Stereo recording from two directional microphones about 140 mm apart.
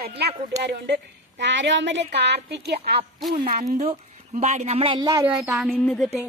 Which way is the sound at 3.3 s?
80° right.